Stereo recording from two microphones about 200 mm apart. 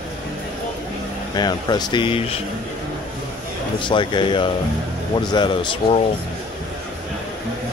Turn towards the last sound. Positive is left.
turn(degrees=25)  # may be behind; listen again after turning